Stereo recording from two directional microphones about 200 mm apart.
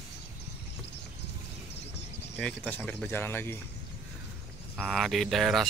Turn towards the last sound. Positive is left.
turn(degrees=0)  # may be behind; listen again after turning